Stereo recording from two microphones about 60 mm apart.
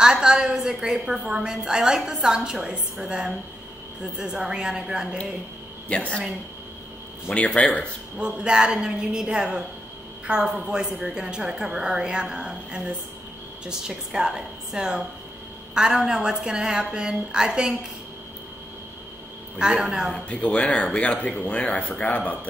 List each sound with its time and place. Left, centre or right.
0.0 s a woman's voice: centre
5.9 s speech: centre
7.2 s speech: left
8.2 s a woman's voice: centre
19.6 s a woman's voice: centre
20.2 s speech: centre